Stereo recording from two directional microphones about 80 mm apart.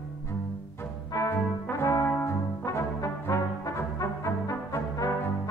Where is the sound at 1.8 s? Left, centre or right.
Left.